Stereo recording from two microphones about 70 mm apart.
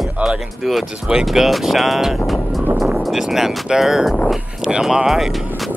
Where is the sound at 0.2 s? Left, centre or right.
Centre.